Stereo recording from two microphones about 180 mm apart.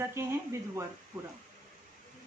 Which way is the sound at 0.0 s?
15° right (ahead or behind).